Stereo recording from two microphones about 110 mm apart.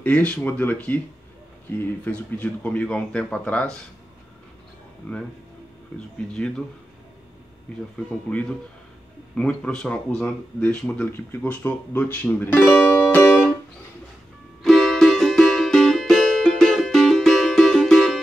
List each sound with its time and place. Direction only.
0.0 s speech: 10° left (ahead or behind)
5.0 s speech: 20° left (ahead or behind)
6.3 s speech: 10° left (ahead or behind)
8.3 s speech: 10° left (ahead or behind)
14.6 s music: 5° left (ahead or behind)